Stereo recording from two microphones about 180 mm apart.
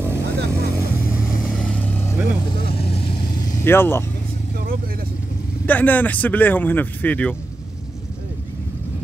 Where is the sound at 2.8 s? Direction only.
30° left (ahead or behind).